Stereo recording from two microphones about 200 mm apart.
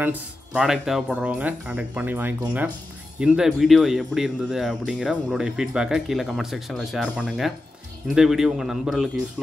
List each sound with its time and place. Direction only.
0.0 s speech: 5° right (ahead or behind)